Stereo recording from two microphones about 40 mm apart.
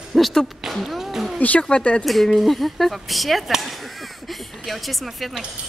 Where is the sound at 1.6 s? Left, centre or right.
Left.